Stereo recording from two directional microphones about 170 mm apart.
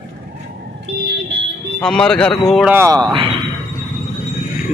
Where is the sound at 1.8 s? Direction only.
5° left (ahead or behind).